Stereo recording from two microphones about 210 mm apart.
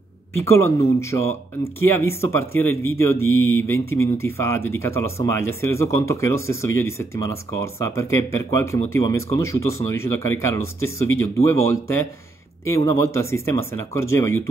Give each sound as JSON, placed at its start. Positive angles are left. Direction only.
{"t": 0.4, "sound": "speech", "side_deg": 10}
{"t": 3.3, "sound": "mantra", "side_deg": 75}
{"t": 3.7, "sound": "speech", "side_deg": 15}